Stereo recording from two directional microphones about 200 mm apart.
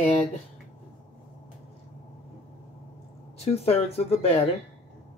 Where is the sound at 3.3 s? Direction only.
30° left (ahead or behind).